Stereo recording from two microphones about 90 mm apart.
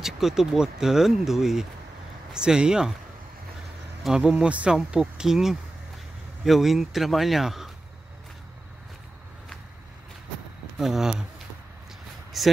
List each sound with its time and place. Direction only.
0.0 s speech: 5° right (ahead or behind)
4.0 s speech: 5° right (ahead or behind)
10.8 s speech: 5° right (ahead or behind)